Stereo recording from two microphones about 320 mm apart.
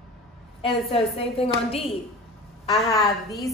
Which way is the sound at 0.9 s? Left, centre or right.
Centre.